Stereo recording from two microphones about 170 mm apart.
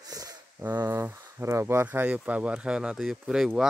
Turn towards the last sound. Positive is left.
turn(degrees=-5)  # may be behind; listen again after turning